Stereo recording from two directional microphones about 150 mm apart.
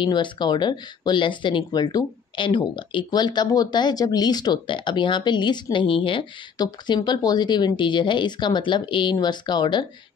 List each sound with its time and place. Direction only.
0.0 s speech: 30° left (ahead or behind)